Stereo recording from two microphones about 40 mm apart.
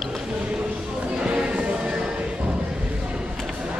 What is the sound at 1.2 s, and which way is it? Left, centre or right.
Music, right.